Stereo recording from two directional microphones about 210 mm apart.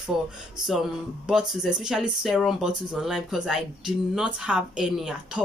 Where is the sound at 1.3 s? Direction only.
5° right (ahead or behind).